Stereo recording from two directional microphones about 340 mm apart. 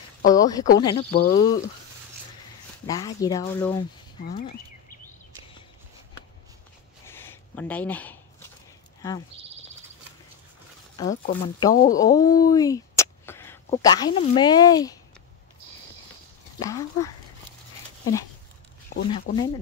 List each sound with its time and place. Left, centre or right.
0.2 s speech: centre
2.9 s speech: centre
4.3 s speech: left
7.1 s a sound: centre
11.0 s speech: centre
16.5 s a sound: centre
19.3 s speech: left